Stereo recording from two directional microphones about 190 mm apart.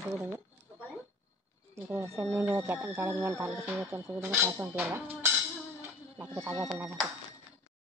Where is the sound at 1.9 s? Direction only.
15° right (ahead or behind).